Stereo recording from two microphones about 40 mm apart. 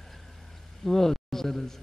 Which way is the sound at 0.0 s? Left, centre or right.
Centre.